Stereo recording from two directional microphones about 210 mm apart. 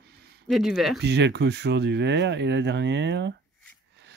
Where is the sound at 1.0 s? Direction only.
55° right (ahead or behind).